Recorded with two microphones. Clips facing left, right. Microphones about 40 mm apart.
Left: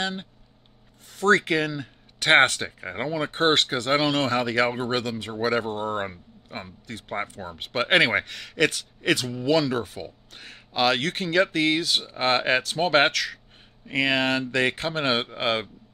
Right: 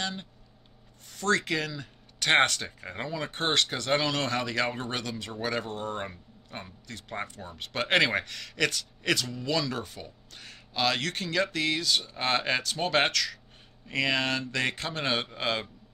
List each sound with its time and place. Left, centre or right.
0.0 s speech: left